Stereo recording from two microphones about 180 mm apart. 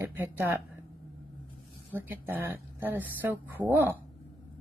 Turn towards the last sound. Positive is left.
turn(degrees=-10)  # may be behind; listen again after turning